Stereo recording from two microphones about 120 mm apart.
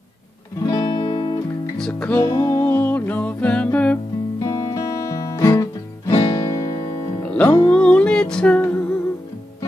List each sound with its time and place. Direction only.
0.6 s music: 30° left (ahead or behind)
1.8 s music: 10° left (ahead or behind)
2.2 s music: 25° left (ahead or behind)
2.7 s music: 15° left (ahead or behind)
4.4 s music: 30° left (ahead or behind)
6.1 s music: 45° left (ahead or behind)
7.2 s music: 10° left (ahead or behind)